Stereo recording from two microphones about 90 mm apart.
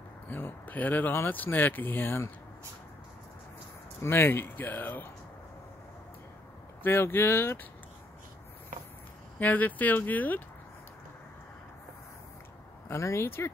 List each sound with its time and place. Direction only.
0.3 s speech: 25° left (ahead or behind)
4.0 s speech: 25° left (ahead or behind)
6.8 s speech: 25° left (ahead or behind)
9.4 s speech: 20° left (ahead or behind)
12.8 s speech: 30° left (ahead or behind)